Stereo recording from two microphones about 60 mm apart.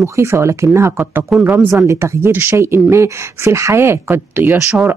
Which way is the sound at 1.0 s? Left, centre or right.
Right.